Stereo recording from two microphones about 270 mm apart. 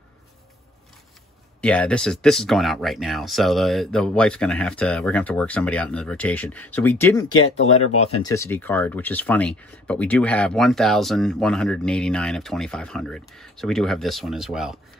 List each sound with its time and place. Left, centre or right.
1.6 s speech: centre
7.6 s speech: left
8.0 s speech: centre